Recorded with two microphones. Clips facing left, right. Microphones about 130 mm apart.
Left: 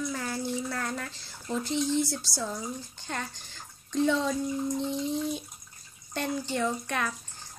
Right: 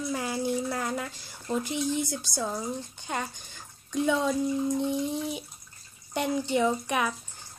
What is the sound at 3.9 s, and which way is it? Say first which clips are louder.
Speech: even; 10° right (ahead or behind).